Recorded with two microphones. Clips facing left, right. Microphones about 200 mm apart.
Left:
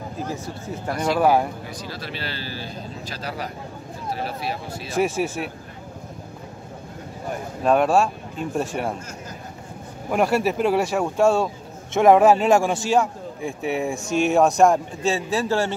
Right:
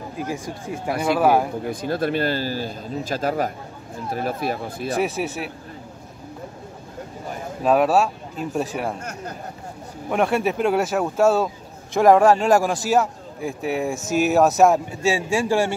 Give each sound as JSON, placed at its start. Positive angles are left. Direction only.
{"t": 0.3, "sound": "speech", "side_deg": -15}
{"t": 1.0, "sound": "speech", "side_deg": 0}
{"t": 1.7, "sound": "speech", "side_deg": -55}
{"t": 4.9, "sound": "speech", "side_deg": 0}
{"t": 7.6, "sound": "speech", "side_deg": -5}
{"t": 10.1, "sound": "speech", "side_deg": 0}